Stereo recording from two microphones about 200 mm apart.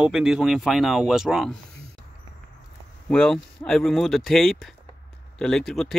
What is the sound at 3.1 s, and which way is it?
Speech, 5° left (ahead or behind).